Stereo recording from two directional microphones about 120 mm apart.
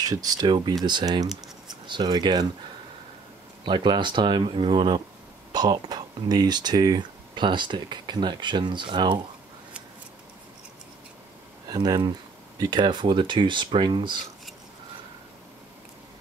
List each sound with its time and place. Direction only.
0.0 s speech: 30° right (ahead or behind)
3.6 s speech: 40° right (ahead or behind)
11.7 s speech: 35° right (ahead or behind)